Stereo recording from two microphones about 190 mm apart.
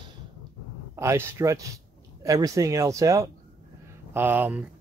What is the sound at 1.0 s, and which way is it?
Speech, 15° right (ahead or behind).